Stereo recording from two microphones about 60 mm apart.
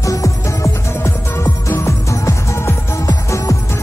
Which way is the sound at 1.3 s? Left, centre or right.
Left.